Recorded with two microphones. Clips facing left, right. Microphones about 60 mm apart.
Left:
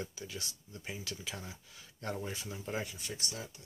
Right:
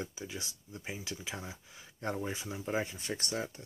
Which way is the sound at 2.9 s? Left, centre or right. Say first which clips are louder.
Right 6 dB; right.